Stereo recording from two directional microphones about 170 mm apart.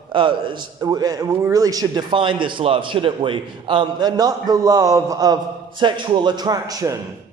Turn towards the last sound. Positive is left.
turn(degrees=-20)  # may be behind; listen again after turning